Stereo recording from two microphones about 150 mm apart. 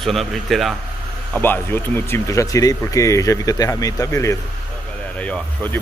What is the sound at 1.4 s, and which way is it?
Speech, 15° left (ahead or behind).